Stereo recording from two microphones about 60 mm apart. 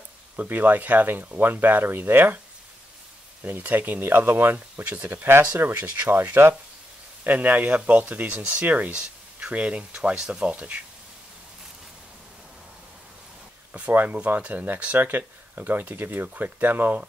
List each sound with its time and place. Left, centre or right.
0.4 s speech: right
3.4 s speech: right
5.6 s speech: right
7.2 s speech: right; by 10.5 s centre
10.5 s speech: right
13.7 s speech: right